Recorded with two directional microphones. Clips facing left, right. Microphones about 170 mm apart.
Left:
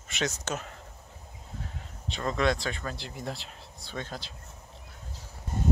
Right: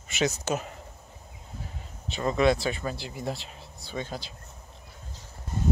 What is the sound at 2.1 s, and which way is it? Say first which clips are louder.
Speech: right 4 dB; 5° right (ahead or behind).